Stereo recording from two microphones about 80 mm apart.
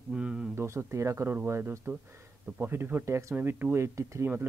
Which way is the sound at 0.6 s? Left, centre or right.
Right.